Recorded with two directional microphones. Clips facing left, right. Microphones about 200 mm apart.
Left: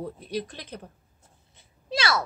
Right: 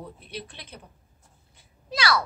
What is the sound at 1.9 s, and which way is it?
Speech, 25° left (ahead or behind).